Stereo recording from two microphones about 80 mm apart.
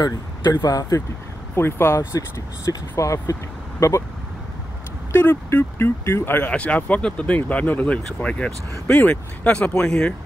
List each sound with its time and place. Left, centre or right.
0.0 s speech: left
1.5 s speech: left
5.1 s speech: left
6.5 s speech: centre